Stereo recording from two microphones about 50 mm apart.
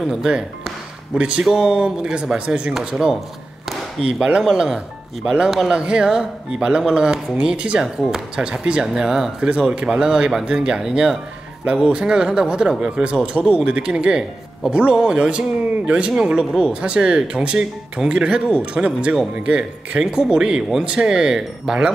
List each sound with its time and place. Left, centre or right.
0.0 s speech: centre
1.1 s speech: right